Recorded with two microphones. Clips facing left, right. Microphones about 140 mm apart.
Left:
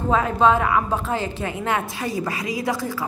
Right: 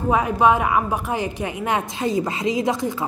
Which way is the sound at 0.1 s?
15° right (ahead or behind).